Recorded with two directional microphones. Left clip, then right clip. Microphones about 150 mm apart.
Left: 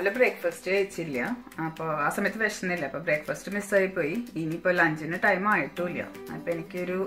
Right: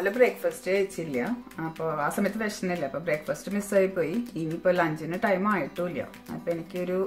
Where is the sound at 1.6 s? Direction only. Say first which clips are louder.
Left 1 dB; 30° right (ahead or behind).